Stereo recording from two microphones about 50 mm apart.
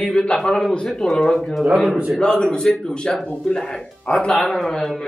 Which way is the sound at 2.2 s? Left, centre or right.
Centre.